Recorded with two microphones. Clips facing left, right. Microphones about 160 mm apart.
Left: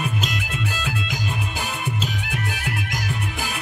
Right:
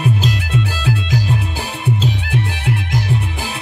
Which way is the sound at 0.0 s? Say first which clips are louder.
Right 7 dB; 35° right (ahead or behind).